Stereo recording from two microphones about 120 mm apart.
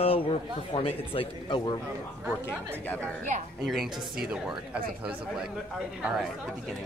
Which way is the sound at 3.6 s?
Centre (ahead or behind).